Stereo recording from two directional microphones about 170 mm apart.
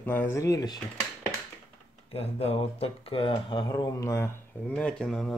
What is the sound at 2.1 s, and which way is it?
Speech, 35° left (ahead or behind).